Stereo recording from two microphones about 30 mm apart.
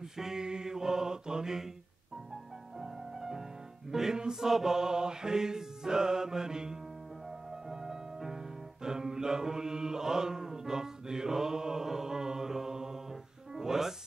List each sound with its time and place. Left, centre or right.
0.4 s chant: right
2.8 s music: centre
4.2 s chant: centre
7.7 s music: centre
8.8 s mantra: right
13.6 s music: centre